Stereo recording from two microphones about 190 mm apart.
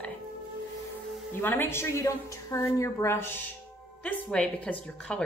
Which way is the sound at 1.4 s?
10° left (ahead or behind).